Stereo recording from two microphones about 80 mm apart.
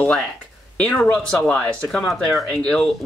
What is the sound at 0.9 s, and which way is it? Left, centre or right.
Speech, centre.